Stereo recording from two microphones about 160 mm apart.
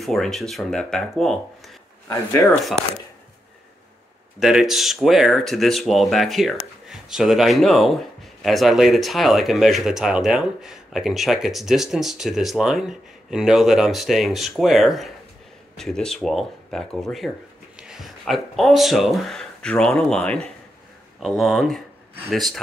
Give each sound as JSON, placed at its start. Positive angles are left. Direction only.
{"t": 0.0, "sound": "speech", "side_deg": 0}
{"t": 2.0, "sound": "speech", "side_deg": 20}
{"t": 4.4, "sound": "speech", "side_deg": -5}